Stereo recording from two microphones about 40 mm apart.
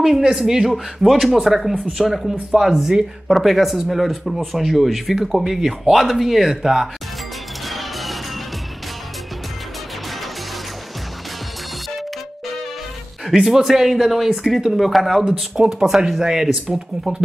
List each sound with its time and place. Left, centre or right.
0.2 s speech: centre
7.6 s music: centre
13.3 s speech: centre
15.6 s speech: centre